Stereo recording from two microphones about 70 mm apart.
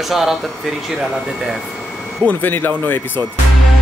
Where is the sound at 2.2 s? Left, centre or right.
Left.